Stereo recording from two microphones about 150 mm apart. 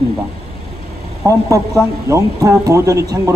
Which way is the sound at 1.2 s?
20° right (ahead or behind).